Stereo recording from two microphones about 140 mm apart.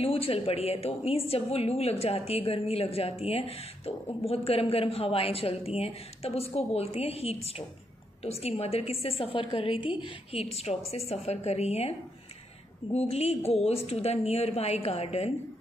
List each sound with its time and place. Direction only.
0.0 s a woman's voice: 40° left (ahead or behind)
12.9 s a woman's voice: 50° left (ahead or behind)